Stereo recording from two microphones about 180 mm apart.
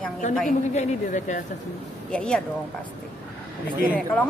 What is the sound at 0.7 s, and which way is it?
Speech, 40° left (ahead or behind).